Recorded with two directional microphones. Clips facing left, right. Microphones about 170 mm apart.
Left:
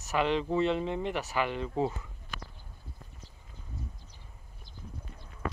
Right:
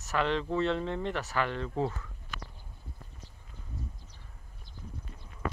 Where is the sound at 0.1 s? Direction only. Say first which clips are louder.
Left 2 dB; 10° left (ahead or behind).